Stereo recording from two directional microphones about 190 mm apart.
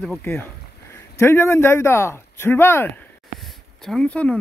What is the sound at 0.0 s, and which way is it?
Speech, 10° left (ahead or behind).